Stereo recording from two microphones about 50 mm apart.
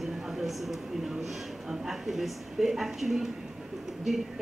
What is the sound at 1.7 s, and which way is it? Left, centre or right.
A woman's voice, centre.